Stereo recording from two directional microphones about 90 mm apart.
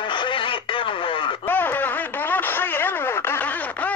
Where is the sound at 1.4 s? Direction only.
20° left (ahead or behind).